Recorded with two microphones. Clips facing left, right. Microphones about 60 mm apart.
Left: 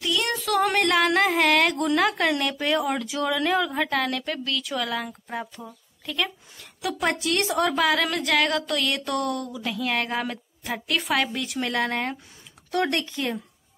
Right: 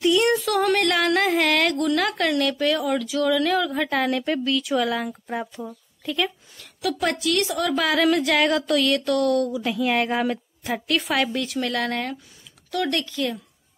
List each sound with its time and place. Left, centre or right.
0.0 s music: centre
0.4 s a sound: centre
1.8 s a sound: left
2.0 s speech: centre
3.9 s speech: centre
6.6 s a woman's voice: centre
7.2 s a woman's voice: left
7.7 s a woman's voice: centre
9.0 s speech: centre
9.4 s a woman's voice: centre
12.7 s speech: left